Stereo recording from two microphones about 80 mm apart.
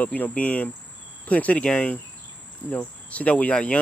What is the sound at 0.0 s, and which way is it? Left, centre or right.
Speech, centre.